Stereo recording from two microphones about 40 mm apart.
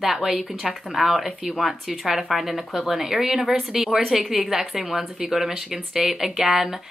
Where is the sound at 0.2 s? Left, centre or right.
Centre.